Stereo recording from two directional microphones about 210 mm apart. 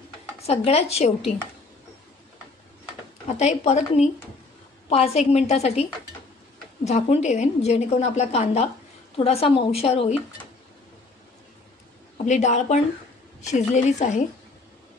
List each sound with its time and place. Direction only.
0.4 s a woman's voice: 30° left (ahead or behind)
3.3 s a woman's voice: 30° left (ahead or behind)
12.3 s a woman's voice: 35° left (ahead or behind)